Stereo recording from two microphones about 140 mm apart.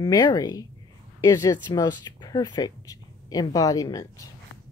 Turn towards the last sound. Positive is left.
turn(degrees=25)  # may be behind; listen again after turning